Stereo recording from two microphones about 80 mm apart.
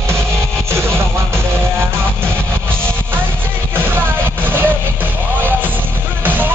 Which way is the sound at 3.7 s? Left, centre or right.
Right.